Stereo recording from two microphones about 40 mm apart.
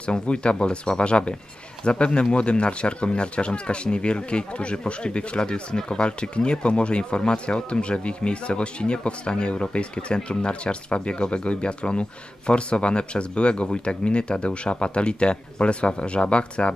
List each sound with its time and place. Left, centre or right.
0.0 s speech: left